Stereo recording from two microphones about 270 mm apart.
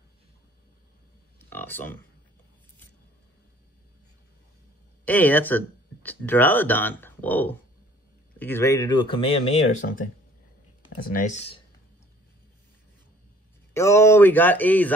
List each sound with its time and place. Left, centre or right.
1.5 s speech: centre
5.0 s speech: centre; by 11.6 s left
13.7 s speech: centre